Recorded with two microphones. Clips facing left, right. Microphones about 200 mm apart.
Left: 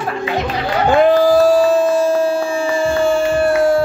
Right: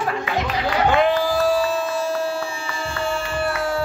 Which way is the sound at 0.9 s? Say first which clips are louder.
Left 12 dB; 45° left (ahead or behind).